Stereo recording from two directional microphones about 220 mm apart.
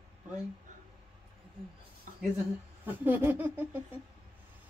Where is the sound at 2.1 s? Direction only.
35° right (ahead or behind).